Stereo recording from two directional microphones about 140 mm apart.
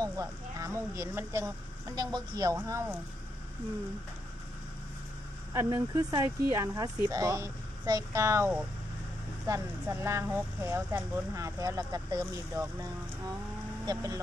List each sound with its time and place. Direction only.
0.0 s speech: 25° right (ahead or behind)
2.0 s speech: 30° right (ahead or behind)
5.5 s speech: 25° right (ahead or behind)
9.5 s speech: 20° right (ahead or behind)